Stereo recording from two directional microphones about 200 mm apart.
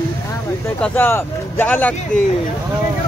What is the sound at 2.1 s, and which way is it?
Speech, 40° left (ahead or behind).